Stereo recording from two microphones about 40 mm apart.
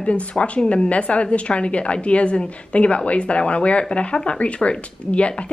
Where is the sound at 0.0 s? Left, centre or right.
Left.